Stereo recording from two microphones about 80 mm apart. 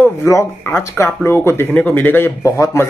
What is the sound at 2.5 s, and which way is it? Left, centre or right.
Speech, left.